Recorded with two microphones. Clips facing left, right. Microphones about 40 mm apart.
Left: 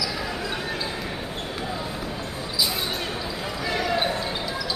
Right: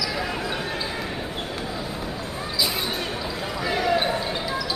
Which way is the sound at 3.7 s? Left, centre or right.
Centre.